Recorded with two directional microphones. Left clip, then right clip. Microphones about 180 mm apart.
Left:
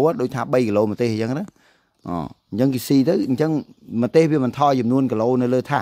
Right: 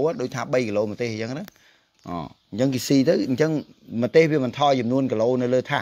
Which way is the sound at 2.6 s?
30° left (ahead or behind).